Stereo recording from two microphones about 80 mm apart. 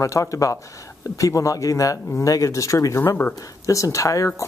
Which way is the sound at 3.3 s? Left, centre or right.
Left.